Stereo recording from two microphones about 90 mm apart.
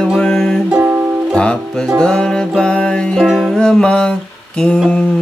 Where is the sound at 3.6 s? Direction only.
10° left (ahead or behind).